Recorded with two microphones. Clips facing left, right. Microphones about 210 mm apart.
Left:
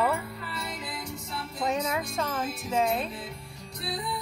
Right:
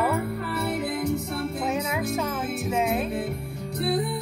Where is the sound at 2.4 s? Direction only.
65° right (ahead or behind).